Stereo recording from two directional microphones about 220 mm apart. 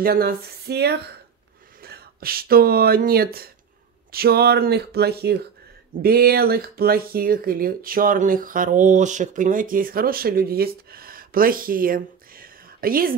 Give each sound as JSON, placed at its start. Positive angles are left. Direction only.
{"t": 0.0, "sound": "speech", "side_deg": -45}